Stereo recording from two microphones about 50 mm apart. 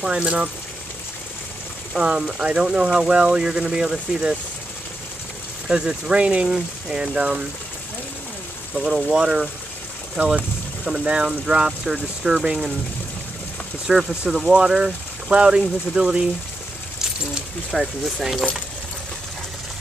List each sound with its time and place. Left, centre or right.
0.0 s speech: centre
2.0 s speech: centre
5.7 s speech: centre
8.7 s speech: centre
10.1 s boat: centre
10.9 s speech: centre
13.9 s speech: centre
14.3 s speech: centre
15.2 s speech: centre
17.6 s speech: centre